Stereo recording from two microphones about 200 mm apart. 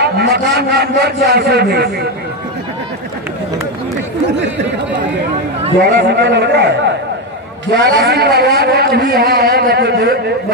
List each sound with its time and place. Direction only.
0.0 s a man's voice: 55° right (ahead or behind)
5.8 s a man's voice: 55° right (ahead or behind)